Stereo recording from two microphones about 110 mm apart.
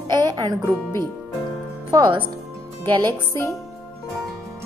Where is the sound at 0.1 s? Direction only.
35° right (ahead or behind).